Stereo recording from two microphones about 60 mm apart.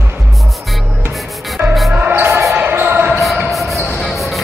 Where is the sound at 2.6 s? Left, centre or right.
Right.